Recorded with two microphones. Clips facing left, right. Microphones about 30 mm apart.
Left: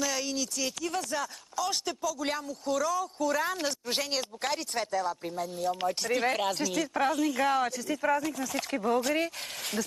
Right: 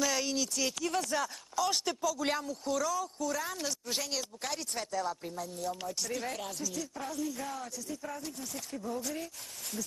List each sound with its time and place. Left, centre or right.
0.0 s speech: centre
3.2 s speech: left
5.9 s speech: left
6.5 s speech: left
8.5 s speech: left